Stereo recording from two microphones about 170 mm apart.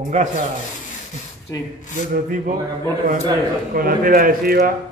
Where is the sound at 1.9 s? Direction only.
50° right (ahead or behind).